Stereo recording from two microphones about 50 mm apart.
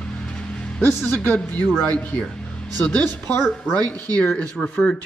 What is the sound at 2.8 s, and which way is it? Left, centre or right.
Speech, left.